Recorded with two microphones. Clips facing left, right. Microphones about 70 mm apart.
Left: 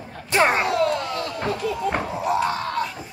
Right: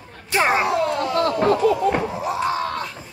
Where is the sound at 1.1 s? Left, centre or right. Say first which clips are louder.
Right 8 dB; right.